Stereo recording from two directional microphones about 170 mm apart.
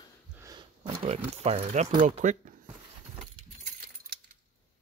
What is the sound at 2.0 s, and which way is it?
Speech, 45° right (ahead or behind).